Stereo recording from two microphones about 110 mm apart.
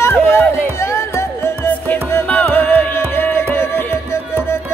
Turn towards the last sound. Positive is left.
turn(degrees=20)  # may be behind; listen again after turning